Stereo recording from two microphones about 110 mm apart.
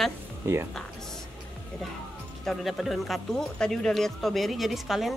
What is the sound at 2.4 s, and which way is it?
Speech, centre (ahead or behind).